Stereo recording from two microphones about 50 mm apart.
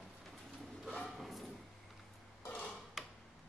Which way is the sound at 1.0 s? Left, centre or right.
Centre.